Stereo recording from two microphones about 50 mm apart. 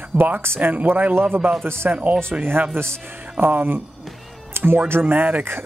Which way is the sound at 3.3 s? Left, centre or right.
Right.